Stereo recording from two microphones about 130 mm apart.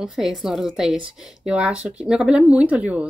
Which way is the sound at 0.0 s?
5° right (ahead or behind).